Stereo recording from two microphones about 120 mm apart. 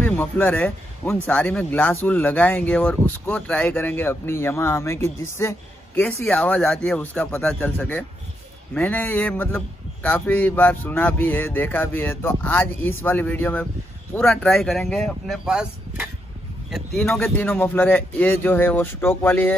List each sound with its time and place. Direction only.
0.0 s speech: 15° left (ahead or behind)
17.1 s speech: 20° left (ahead or behind)